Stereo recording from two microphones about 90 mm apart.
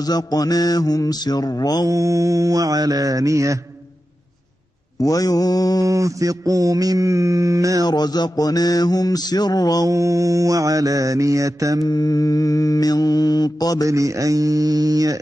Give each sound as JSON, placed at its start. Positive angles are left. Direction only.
{"t": 0.0, "sound": "mantra", "side_deg": 45}
{"t": 1.9, "sound": "mantra", "side_deg": -40}
{"t": 4.9, "sound": "mantra", "side_deg": 40}
{"t": 5.9, "sound": "mantra", "side_deg": -40}
{"t": 7.8, "sound": "mantra", "side_deg": 50}
{"t": 9.8, "sound": "mantra", "side_deg": -35}
{"t": 11.8, "sound": "mantra", "side_deg": 45}
{"t": 13.8, "sound": "mantra", "side_deg": -35}